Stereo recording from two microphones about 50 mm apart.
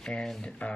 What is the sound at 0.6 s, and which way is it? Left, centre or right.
Speech, left.